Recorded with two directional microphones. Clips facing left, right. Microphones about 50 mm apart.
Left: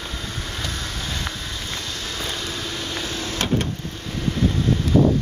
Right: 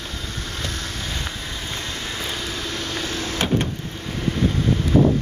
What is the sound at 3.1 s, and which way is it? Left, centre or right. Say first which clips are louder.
Power windows: right 2 dB; right.